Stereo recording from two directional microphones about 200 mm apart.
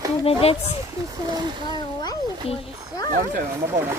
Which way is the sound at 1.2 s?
20° right (ahead or behind).